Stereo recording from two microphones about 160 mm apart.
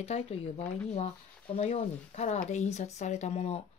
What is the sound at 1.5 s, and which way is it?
Speech, 45° left (ahead or behind).